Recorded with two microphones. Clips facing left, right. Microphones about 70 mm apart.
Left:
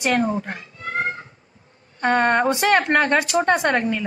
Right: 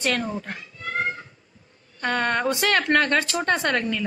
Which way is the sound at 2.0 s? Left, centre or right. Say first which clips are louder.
Left 6 dB; left.